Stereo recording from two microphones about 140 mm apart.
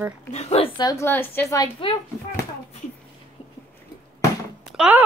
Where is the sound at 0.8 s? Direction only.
25° left (ahead or behind).